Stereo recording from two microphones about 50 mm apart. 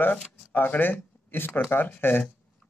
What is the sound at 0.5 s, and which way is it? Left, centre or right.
Speech, left.